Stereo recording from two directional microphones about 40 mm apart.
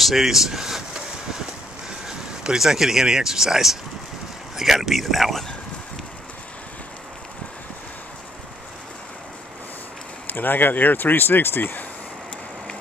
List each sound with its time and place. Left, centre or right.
0.0 s speech: centre
2.0 s speech: centre
10.2 s speech: left